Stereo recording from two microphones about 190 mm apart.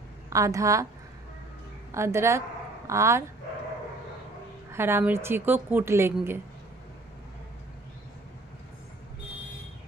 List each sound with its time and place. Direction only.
0.3 s a woman's voice: 15° right (ahead or behind)
1.9 s a woman's voice: 15° right (ahead or behind)
4.7 s a woman's voice: 10° right (ahead or behind)